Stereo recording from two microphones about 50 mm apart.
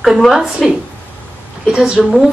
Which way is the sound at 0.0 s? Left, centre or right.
Centre.